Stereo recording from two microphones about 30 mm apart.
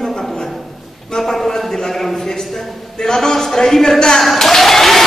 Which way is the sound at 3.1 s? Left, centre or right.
Left.